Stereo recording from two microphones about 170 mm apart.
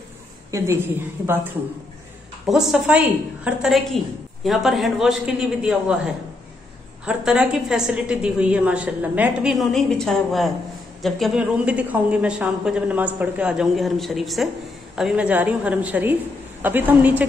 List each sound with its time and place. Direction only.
0.5 s a woman's voice: 15° right (ahead or behind)
2.4 s a woman's voice: centre (ahead or behind)